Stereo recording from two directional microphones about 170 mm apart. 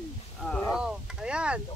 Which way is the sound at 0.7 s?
5° right (ahead or behind).